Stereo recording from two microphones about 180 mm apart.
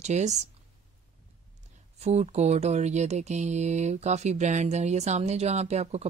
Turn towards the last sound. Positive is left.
turn(degrees=-35)  # may be behind; listen again after turning